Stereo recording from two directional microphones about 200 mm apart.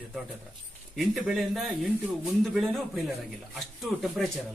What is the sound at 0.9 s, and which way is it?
Speech, centre (ahead or behind).